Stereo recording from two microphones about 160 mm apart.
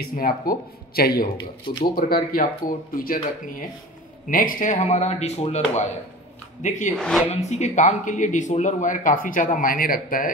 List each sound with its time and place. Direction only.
0.0 s speech: 65° left (ahead or behind)
1.4 s speech: 30° left (ahead or behind)
2.0 s speech: 65° left (ahead or behind)
4.3 s speech: 60° left (ahead or behind)
7.0 s speech: 5° left (ahead or behind)
7.4 s speech: 45° left (ahead or behind); by 10.3 s 60° left (ahead or behind)